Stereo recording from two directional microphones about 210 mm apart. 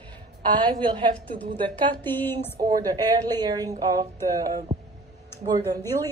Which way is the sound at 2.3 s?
20° right (ahead or behind).